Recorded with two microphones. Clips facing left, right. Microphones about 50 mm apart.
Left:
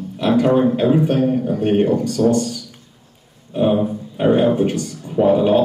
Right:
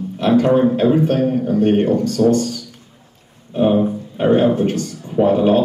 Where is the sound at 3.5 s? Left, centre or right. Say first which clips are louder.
Right 2 dB; centre.